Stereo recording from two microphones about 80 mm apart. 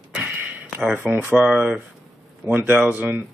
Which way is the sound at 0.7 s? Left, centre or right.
Centre.